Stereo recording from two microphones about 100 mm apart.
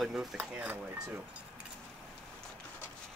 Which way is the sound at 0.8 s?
25° right (ahead or behind).